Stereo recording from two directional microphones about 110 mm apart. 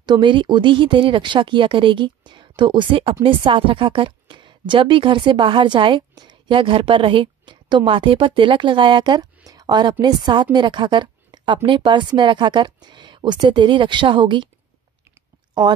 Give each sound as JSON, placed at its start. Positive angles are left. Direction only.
{"t": 0.0, "sound": "a woman's voice", "side_deg": -45}